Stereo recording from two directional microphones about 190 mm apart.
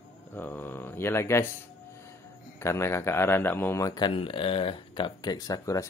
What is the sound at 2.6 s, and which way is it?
A man's voice, 15° left (ahead or behind).